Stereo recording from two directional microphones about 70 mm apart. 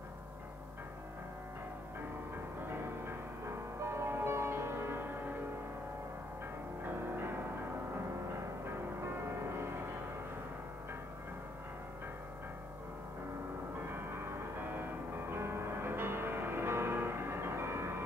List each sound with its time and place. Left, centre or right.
3.8 s music: right
6.8 s music: right
9.1 s music: right
13.8 s music: right